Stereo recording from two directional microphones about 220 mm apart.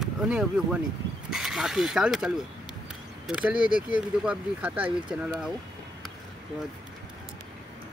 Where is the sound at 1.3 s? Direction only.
Centre (ahead or behind).